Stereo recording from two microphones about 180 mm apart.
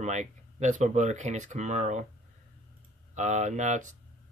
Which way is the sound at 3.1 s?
40° right (ahead or behind).